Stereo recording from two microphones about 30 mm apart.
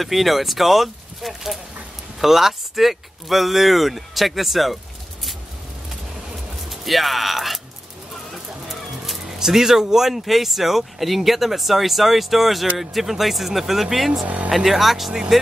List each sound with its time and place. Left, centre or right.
0.0 s speech: centre
6.7 s speech: centre
9.4 s speech: centre
14.2 s speech: right
14.7 s speech: centre